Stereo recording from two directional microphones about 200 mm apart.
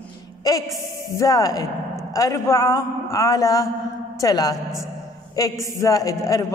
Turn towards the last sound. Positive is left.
turn(degrees=15)  # may be behind; listen again after turning